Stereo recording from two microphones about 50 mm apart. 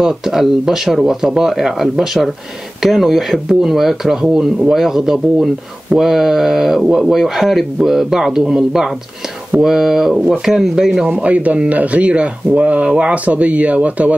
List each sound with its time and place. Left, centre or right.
0.0 s speech: centre
11.2 s speech: right